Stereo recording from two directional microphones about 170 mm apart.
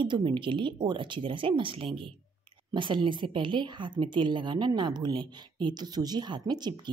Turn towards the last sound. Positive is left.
turn(degrees=-25)  # may be behind; listen again after turning